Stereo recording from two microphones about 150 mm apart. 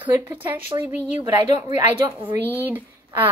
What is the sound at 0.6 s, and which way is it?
Speech, 30° right (ahead or behind).